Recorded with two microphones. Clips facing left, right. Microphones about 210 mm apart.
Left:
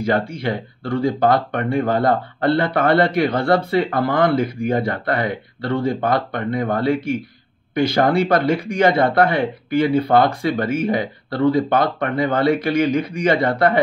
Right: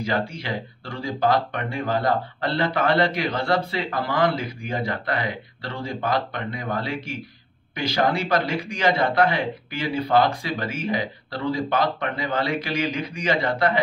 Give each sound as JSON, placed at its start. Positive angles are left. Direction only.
{"t": 0.0, "sound": "speech", "side_deg": 55}